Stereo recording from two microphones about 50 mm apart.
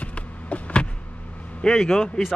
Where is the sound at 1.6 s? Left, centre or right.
Centre.